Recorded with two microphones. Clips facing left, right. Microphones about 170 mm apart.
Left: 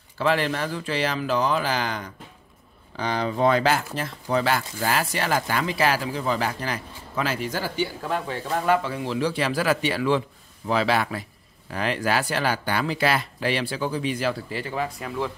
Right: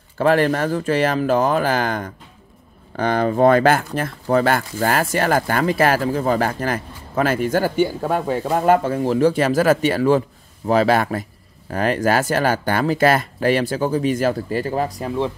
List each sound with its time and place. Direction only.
0.2 s speech: 50° right (ahead or behind); by 15.3 s 30° right (ahead or behind)